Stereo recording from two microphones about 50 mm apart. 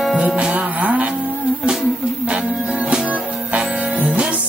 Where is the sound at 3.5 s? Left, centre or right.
Right.